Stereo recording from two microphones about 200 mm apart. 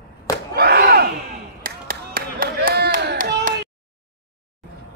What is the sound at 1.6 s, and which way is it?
Clapping, 45° right (ahead or behind).